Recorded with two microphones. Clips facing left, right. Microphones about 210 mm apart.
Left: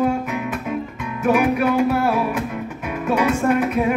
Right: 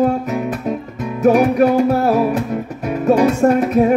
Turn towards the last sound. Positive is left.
turn(degrees=-40)  # may be behind; listen again after turning